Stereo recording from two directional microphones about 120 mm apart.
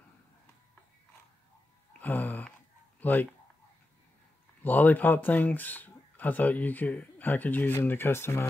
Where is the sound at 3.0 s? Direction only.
15° left (ahead or behind).